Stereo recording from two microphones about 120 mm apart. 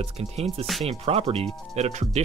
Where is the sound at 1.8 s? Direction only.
65° right (ahead or behind).